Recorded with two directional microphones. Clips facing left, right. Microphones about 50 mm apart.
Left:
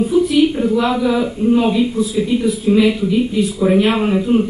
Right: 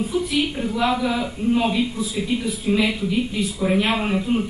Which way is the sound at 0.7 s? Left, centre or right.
Centre.